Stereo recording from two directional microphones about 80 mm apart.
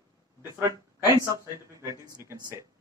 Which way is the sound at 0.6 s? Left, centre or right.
Right.